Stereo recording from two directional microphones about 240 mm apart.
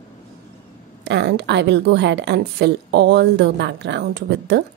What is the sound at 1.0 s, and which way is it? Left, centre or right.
A woman's voice, right.